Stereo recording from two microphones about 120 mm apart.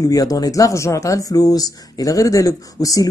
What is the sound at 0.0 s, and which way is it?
Speech, 30° left (ahead or behind).